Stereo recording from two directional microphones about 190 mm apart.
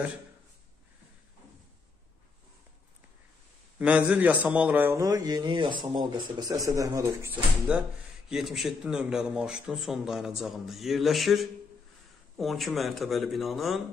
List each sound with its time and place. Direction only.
3.7 s a man's voice: 10° right (ahead or behind)